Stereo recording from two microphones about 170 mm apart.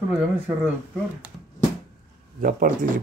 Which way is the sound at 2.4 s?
50° right (ahead or behind).